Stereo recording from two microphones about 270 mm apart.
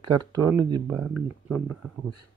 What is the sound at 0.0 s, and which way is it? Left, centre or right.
Speech, right.